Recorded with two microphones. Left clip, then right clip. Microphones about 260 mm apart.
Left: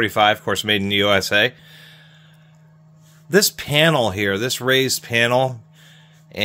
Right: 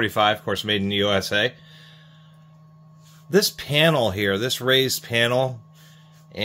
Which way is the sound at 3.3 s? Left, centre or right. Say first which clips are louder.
Left 3 dB; left.